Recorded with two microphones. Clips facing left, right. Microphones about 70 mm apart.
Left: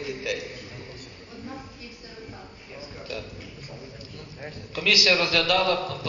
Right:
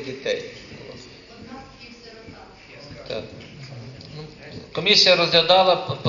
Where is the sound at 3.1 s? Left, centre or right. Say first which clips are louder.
Right 6 dB; right.